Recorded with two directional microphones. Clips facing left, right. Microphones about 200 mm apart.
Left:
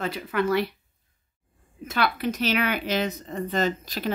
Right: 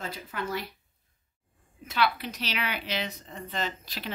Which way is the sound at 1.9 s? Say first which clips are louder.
Left 3 dB; 50° left (ahead or behind).